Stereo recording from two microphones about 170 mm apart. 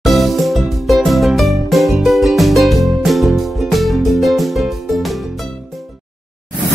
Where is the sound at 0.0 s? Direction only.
Centre (ahead or behind).